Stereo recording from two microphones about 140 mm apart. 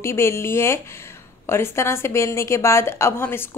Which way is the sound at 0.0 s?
20° left (ahead or behind).